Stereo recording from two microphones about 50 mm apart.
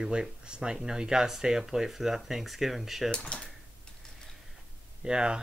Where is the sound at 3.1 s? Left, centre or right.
Centre.